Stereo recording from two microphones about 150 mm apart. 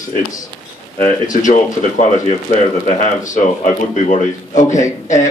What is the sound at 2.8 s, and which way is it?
A man's voice, 55° left (ahead or behind).